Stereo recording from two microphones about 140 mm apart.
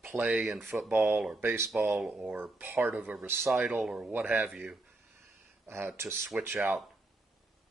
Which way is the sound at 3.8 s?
5° right (ahead or behind).